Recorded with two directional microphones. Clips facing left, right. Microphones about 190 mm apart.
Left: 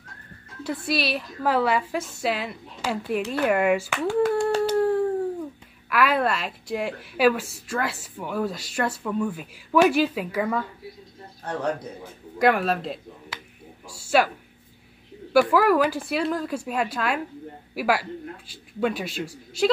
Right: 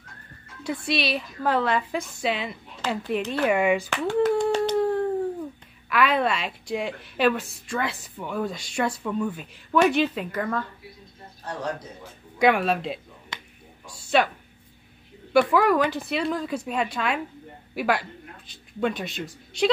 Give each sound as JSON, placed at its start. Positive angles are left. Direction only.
{"t": 0.7, "sound": "a woman's voice", "side_deg": 5}
{"t": 12.4, "sound": "a woman's voice", "side_deg": 0}